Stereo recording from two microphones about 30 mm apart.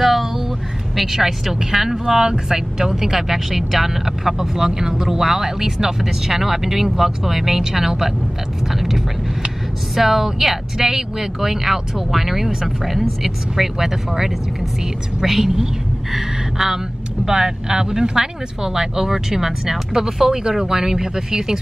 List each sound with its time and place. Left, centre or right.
0.0 s vehicle: centre
1.0 s speech: centre